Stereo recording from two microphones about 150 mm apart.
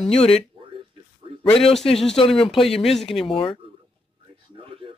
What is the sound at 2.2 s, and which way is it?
A man's voice, 40° left (ahead or behind).